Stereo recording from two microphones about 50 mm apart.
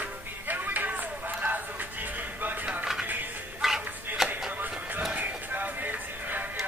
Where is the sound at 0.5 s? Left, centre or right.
Right.